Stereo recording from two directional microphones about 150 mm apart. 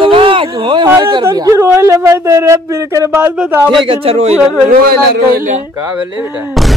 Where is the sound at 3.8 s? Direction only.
40° right (ahead or behind).